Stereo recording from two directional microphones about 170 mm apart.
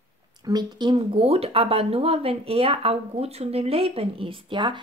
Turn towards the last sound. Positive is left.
turn(degrees=-30)  # may be behind; listen again after turning